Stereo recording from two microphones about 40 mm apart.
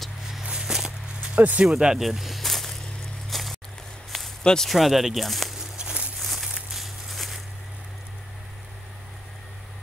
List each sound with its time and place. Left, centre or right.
0.4 s a sound: centre
1.3 s speech: right
1.6 s speech: right
2.0 s snake: centre
3.3 s vehicle: centre
4.4 s speech: centre
4.6 s speech: centre
6.2 s a sound: centre